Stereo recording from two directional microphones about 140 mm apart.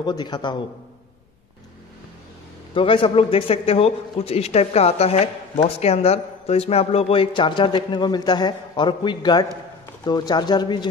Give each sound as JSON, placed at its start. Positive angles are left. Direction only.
{"t": 0.0, "sound": "speech", "side_deg": 30}
{"t": 2.7, "sound": "a man's voice", "side_deg": 40}